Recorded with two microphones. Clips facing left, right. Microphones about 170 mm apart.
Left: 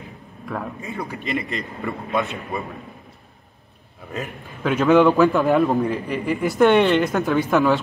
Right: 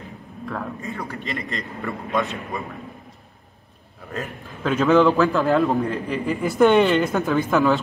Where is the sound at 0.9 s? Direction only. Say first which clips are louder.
Left 8 dB; 10° left (ahead or behind).